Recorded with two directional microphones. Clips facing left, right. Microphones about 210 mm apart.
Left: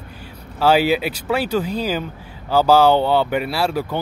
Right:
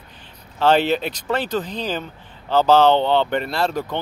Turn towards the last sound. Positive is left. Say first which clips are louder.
# left 1 dB
turn(degrees=10)  # may be behind; listen again after turning